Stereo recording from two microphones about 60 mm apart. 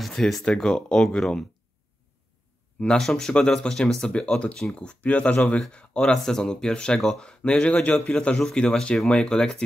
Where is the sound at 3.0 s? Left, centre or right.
Centre.